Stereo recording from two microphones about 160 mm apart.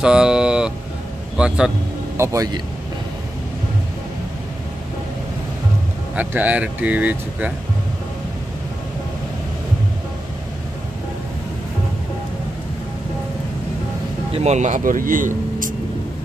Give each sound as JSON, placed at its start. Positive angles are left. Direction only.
{"t": 0.0, "sound": "a sound", "side_deg": -5}
{"t": 1.3, "sound": "a man's voice", "side_deg": -5}
{"t": 2.1, "sound": "a man's voice", "side_deg": -20}
{"t": 6.1, "sound": "speech", "side_deg": -10}
{"t": 14.3, "sound": "speech", "side_deg": -45}